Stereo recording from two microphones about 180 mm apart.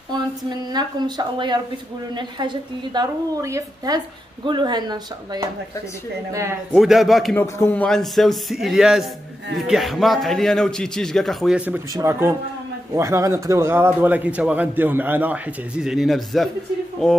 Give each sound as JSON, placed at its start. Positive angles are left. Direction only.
{"t": 0.7, "sound": "a woman's voice", "side_deg": -25}
{"t": 6.7, "sound": "a man's voice", "side_deg": 0}
{"t": 7.3, "sound": "a man's voice", "side_deg": 10}